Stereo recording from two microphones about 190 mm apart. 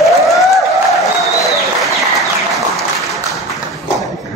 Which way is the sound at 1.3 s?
15° left (ahead or behind).